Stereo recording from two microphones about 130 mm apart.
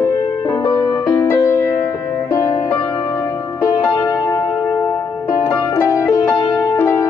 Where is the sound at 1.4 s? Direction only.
25° left (ahead or behind).